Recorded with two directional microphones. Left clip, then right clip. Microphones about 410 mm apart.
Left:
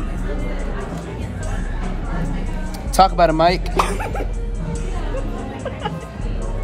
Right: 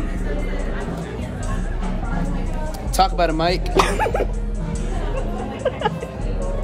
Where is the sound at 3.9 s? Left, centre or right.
Right.